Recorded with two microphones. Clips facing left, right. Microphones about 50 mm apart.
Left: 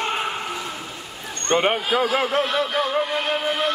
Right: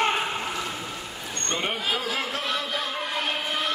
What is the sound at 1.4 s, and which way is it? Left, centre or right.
A man's voice, left.